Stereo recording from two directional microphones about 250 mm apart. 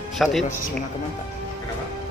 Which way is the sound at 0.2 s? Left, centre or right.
Centre.